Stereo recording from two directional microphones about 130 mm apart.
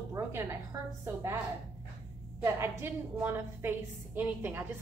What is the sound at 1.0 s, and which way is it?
Speech, 20° right (ahead or behind).